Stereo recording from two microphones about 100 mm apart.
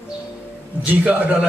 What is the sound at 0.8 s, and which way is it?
Speech, 15° right (ahead or behind).